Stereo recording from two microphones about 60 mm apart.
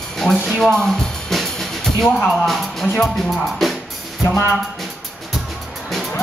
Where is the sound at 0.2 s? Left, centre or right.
Centre.